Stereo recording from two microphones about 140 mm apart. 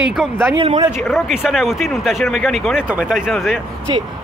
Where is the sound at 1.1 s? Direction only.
5° right (ahead or behind).